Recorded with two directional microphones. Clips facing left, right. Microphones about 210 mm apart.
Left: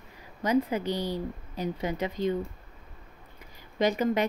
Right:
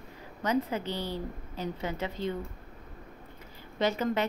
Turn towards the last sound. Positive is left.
turn(degrees=15)  # may be behind; listen again after turning